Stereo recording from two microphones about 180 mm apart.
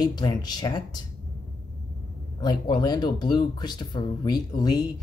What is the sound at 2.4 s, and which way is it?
Speech, 25° left (ahead or behind).